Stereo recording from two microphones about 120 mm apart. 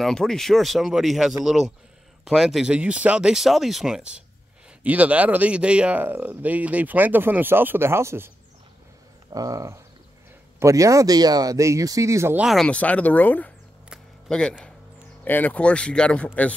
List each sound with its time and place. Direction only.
0.0 s speech: 5° left (ahead or behind); by 8.3 s 20° right (ahead or behind)
9.3 s speech: 30° right (ahead or behind)
12.4 s speech: centre (ahead or behind)
12.6 s speech: 10° left (ahead or behind)